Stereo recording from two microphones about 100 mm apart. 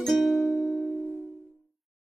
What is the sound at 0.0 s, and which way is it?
Music, centre (ahead or behind).